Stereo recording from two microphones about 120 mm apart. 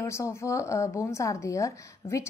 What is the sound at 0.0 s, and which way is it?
A woman's voice, 25° left (ahead or behind).